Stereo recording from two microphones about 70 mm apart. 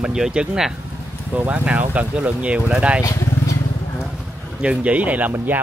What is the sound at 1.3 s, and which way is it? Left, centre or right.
Speech, right.